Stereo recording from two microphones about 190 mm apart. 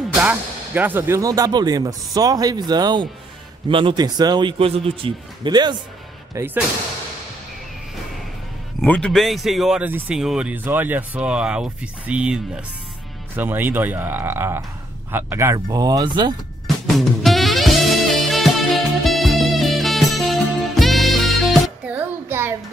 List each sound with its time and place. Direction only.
0.2 s speech: 10° right (ahead or behind)
6.3 s speech: 10° right (ahead or behind)
8.8 s speech: 5° left (ahead or behind)
13.4 s speech: 10° right (ahead or behind)
16.6 s music: centre (ahead or behind)